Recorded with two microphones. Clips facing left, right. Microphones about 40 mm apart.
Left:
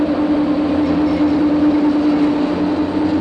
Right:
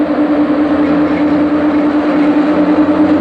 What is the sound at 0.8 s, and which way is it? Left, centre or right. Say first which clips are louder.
Vehicle: right 4 dB; right.